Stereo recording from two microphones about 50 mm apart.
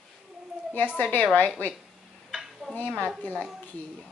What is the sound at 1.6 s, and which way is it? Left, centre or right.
Speech, left.